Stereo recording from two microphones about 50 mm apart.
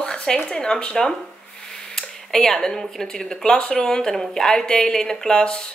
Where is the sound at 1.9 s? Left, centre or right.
Centre.